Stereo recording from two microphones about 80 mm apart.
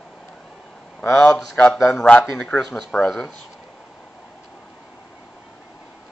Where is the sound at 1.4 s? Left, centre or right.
Centre.